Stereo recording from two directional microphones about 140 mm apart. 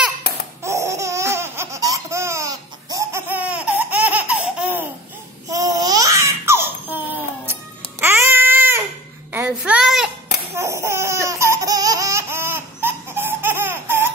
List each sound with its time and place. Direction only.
0.7 s laughter: 20° right (ahead or behind)
5.5 s laughter: 25° right (ahead or behind)
8.0 s baby cry: 15° right (ahead or behind)
9.3 s a sound: 10° right (ahead or behind)
10.5 s laughter: 20° right (ahead or behind)